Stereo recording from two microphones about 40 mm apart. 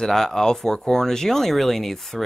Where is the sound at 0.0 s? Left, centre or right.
Centre.